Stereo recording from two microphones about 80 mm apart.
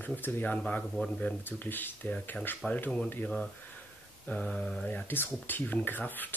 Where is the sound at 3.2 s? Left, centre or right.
Centre.